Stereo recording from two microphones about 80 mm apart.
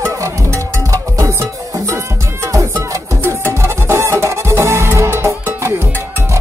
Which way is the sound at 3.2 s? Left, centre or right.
Right.